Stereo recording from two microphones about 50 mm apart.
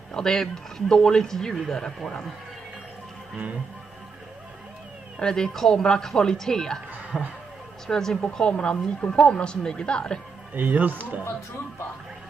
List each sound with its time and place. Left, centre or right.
0.1 s a woman's voice: centre
5.2 s a woman's voice: centre
7.1 s speech: centre
7.8 s a woman's voice: centre
10.5 s speech: right